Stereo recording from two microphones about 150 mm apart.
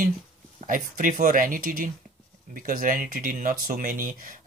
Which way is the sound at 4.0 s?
60° right (ahead or behind).